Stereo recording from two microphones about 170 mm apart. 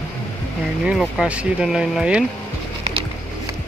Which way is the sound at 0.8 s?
5° right (ahead or behind).